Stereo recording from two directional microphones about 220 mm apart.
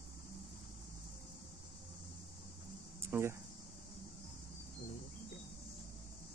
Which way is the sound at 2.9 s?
10° right (ahead or behind).